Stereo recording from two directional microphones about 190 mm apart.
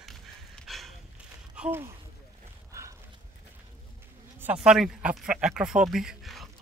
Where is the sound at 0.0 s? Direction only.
Centre (ahead or behind).